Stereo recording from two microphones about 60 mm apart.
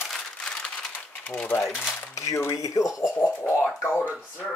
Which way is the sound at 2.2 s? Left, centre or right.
Left.